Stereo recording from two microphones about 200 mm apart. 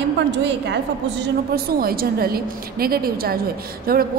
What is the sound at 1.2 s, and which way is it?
A woman's voice, 50° right (ahead or behind).